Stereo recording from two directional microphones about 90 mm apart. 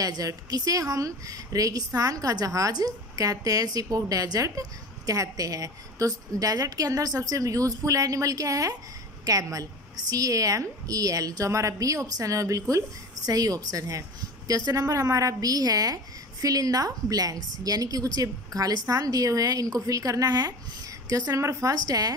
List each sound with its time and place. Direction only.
0.0 s speech: 40° right (ahead or behind)